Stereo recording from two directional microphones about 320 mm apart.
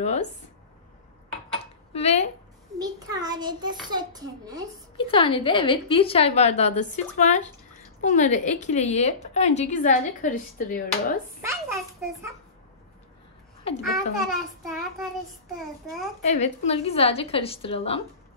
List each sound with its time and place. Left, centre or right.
0.0 s a woman's voice: centre
1.5 s cutlery: centre
2.8 s a child's voice: centre
4.9 s a woman's voice: centre
11.4 s a child's voice: centre
13.8 s child singing: centre
16.2 s a woman's voice: left